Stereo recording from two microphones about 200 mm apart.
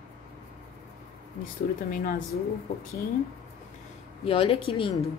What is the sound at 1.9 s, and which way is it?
Speech, 45° left (ahead or behind).